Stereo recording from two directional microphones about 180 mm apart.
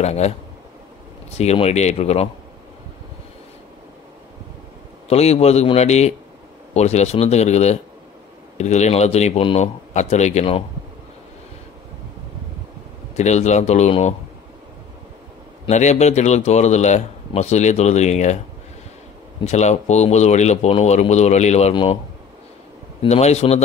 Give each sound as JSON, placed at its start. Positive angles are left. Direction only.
{"t": 0.0, "sound": "speech", "side_deg": 35}
{"t": 1.3, "sound": "speech", "side_deg": 35}
{"t": 5.1, "sound": "speech", "side_deg": 35}
{"t": 13.1, "sound": "speech", "side_deg": 40}
{"t": 15.6, "sound": "speech", "side_deg": 40}
{"t": 19.4, "sound": "speech", "side_deg": 40}
{"t": 23.0, "sound": "speech", "side_deg": 35}